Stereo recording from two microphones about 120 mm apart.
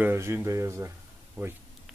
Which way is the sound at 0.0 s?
20° right (ahead or behind).